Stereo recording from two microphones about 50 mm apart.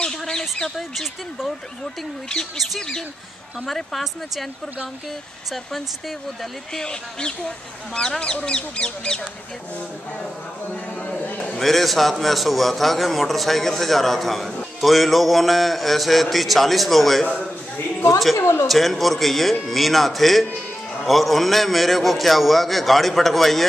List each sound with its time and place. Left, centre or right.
0.0 s bird: centre
0.7 s a man's voice: centre
2.5 s a man's voice: centre
6.7 s speech: centre
10.7 s a sound: left
11.5 s a man's voice: centre
18.3 s speech: left
18.7 s a man's voice: centre